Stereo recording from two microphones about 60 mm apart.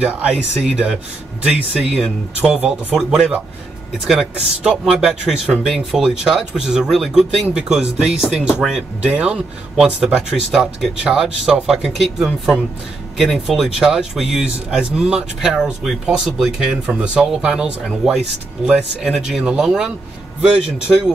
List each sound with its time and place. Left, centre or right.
0.0 s speech: centre